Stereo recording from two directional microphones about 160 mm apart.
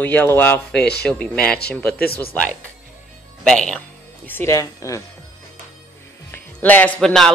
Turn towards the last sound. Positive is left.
turn(degrees=5)  # may be behind; listen again after turning